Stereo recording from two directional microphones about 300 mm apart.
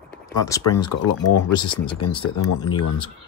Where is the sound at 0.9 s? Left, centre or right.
Left.